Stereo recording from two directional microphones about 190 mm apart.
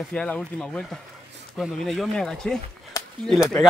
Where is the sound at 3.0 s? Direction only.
20° left (ahead or behind).